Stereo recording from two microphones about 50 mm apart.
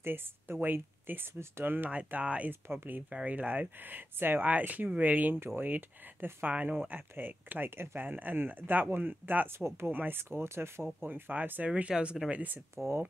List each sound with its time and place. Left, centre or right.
0.0 s speech: right
2.2 s speech: right
2.7 s speech: right
3.1 s speech: right
9.6 s speech: right
9.8 s speech: right
11.0 s speech: right
11.9 s speech: right
12.7 s speech: right